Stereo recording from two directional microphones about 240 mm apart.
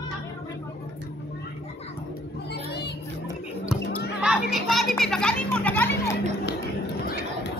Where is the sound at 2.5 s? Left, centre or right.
Left.